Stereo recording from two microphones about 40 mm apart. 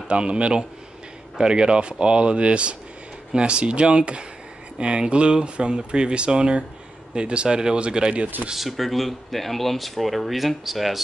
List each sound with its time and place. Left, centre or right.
0.1 s speech: right
8.5 s speech: centre